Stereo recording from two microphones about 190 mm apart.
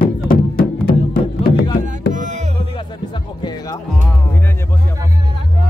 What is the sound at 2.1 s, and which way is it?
Music, 40° right (ahead or behind).